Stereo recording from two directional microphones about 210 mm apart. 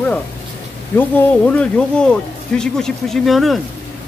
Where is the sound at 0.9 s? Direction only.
5° left (ahead or behind).